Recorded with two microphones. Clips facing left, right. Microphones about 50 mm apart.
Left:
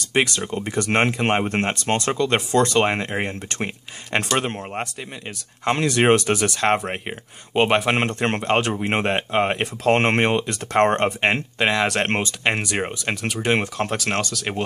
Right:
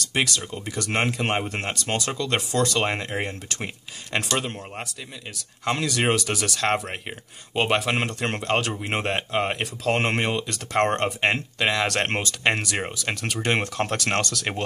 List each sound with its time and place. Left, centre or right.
0.1 s speech: left
4.2 s speech: left
5.7 s speech: left; by 12.1 s centre
12.1 s speech: left; by 14.6 s centre